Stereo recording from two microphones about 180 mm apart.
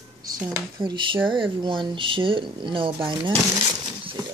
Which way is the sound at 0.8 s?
25° right (ahead or behind).